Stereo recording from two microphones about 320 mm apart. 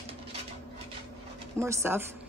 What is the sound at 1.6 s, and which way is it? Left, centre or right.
Speech, centre.